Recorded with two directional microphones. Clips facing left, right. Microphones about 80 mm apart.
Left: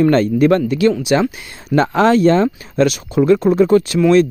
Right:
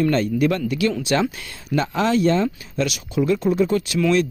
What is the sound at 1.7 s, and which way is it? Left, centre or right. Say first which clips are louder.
Speech: left 7 dB; left.